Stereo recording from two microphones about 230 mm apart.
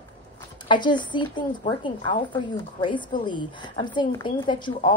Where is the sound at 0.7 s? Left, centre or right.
Centre.